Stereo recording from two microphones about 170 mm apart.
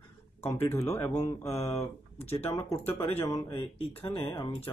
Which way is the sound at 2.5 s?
20° left (ahead or behind).